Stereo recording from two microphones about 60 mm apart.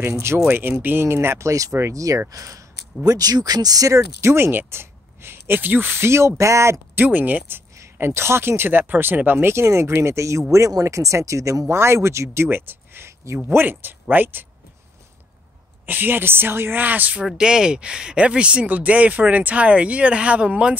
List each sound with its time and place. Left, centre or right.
0.1 s speech: right
0.5 s speech: right
2.0 s speech: right
3.1 s speech: right
4.2 s speech: right
7.0 s speech: right
8.0 s speech: right
11.6 s speech: right
13.5 s speech: right
15.8 s speech: right
17.4 s speech: centre